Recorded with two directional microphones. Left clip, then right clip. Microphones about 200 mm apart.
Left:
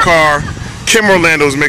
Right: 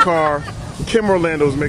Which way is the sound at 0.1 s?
15° left (ahead or behind).